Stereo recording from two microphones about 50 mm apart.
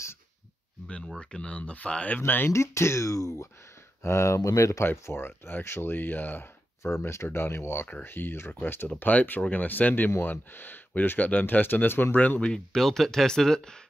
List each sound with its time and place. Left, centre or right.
0.8 s speech: left
2.1 s speech: left
2.5 s speech: left
4.0 s speech: left
5.1 s speech: left
6.8 s speech: left
12.2 s speech: left
12.5 s speech: centre